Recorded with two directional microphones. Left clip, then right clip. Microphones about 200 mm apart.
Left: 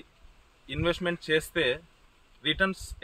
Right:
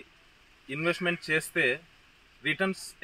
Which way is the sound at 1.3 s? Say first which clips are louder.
Left 1 dB; 35° left (ahead or behind).